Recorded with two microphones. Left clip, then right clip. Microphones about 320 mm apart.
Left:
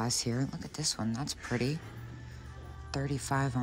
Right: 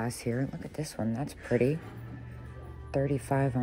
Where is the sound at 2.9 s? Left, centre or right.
Centre.